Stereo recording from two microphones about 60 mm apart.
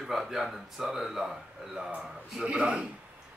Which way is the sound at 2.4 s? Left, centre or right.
Centre.